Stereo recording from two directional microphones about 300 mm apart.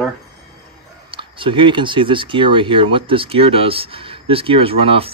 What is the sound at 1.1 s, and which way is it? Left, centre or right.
Speech, centre.